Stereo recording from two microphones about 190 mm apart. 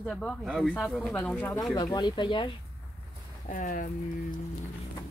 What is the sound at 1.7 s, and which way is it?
Speech, 25° left (ahead or behind).